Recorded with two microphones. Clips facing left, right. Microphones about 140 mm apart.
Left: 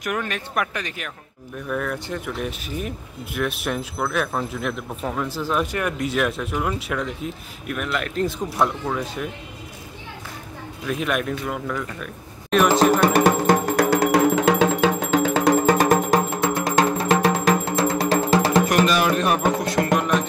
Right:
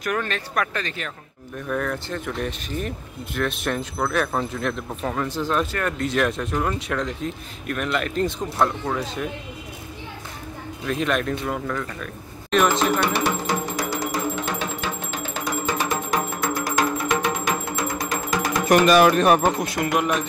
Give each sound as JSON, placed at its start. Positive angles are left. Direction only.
{"t": 0.0, "sound": "speech", "side_deg": 15}
{"t": 10.9, "sound": "speech", "side_deg": 5}
{"t": 12.7, "sound": "music", "side_deg": 40}
{"t": 16.3, "sound": "music", "side_deg": 25}
{"t": 18.7, "sound": "music", "side_deg": -50}
{"t": 19.8, "sound": "speech", "side_deg": -10}